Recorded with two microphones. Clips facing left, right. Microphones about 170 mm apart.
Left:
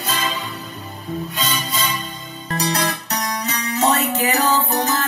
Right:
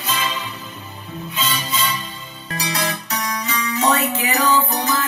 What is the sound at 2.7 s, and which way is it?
Music, 40° left (ahead or behind).